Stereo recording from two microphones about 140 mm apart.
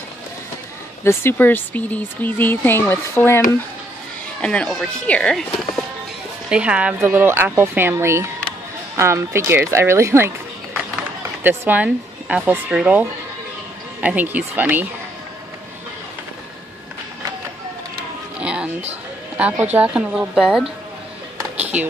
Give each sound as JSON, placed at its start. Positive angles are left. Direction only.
{"t": 1.0, "sound": "speech", "side_deg": 15}
{"t": 6.5, "sound": "speech", "side_deg": -10}
{"t": 18.4, "sound": "music", "side_deg": -10}
{"t": 19.6, "sound": "speech", "side_deg": -10}